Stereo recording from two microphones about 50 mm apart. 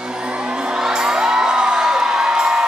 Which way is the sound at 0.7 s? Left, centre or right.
Centre.